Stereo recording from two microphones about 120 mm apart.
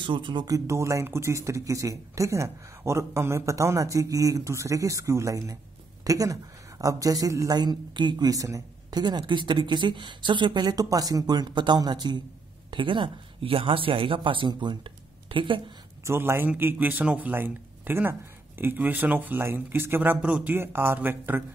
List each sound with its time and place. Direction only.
0.0 s a woman's voice: 40° right (ahead or behind)
0.7 s a woman's voice: 25° right (ahead or behind); by 15.6 s 45° right (ahead or behind)
16.0 s speech: 20° right (ahead or behind)